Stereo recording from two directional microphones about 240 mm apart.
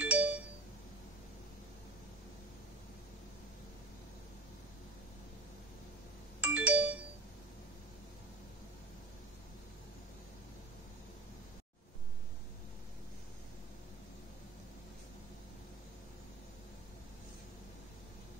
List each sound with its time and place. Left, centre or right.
0.0 s doorbell: centre
6.4 s doorbell: centre